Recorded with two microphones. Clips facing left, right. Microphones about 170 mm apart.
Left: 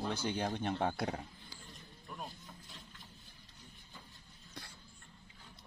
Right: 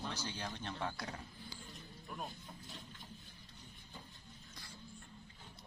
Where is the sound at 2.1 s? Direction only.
5° right (ahead or behind).